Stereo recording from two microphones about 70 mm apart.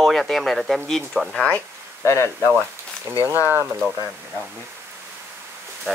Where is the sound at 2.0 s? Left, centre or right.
Left.